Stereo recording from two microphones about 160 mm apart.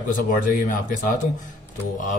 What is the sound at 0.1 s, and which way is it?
A man's voice, 60° left (ahead or behind).